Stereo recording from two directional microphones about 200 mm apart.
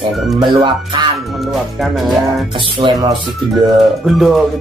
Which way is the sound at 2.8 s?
25° right (ahead or behind).